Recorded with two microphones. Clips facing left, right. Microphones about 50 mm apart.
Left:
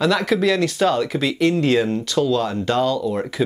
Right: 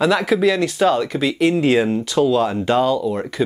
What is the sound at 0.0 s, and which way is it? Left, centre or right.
Speech, centre.